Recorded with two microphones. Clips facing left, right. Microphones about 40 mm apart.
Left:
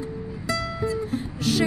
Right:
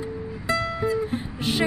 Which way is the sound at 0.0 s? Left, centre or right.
Right.